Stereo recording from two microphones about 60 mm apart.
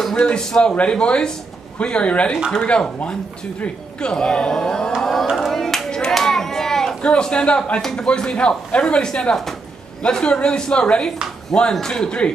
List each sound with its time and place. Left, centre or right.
0.2 s speech: centre
5.3 s clapping: centre
7.0 s speech: centre